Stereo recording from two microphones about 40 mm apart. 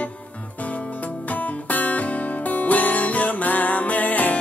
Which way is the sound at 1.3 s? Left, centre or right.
Left.